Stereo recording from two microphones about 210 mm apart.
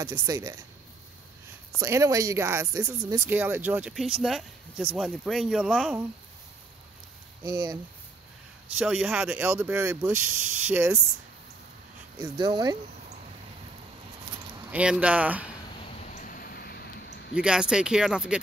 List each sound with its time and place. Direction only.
0.0 s speech: 15° right (ahead or behind)
1.8 s speech: 15° right (ahead or behind)
8.7 s speech: 5° right (ahead or behind)
12.2 s speech: 20° right (ahead or behind)
14.7 s speech: 5° right (ahead or behind)
15.8 s a sound: 35° left (ahead or behind); by 17.0 s 50° left (ahead or behind)
17.3 s speech: 5° right (ahead or behind)